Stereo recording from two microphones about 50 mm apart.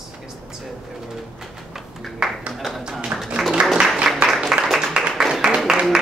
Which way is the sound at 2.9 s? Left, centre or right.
Centre.